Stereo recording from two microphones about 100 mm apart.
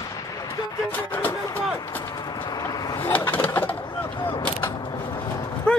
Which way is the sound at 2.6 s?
40° left (ahead or behind).